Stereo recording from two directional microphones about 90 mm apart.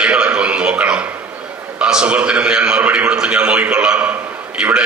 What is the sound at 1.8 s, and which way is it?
A man's voice, 10° right (ahead or behind).